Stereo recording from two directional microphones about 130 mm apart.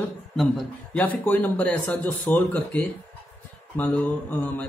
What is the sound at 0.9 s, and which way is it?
Speech, 10° left (ahead or behind).